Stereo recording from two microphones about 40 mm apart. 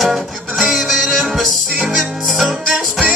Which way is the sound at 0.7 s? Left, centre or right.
Centre.